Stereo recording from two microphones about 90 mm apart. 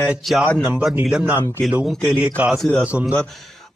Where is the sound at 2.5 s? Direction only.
5° left (ahead or behind).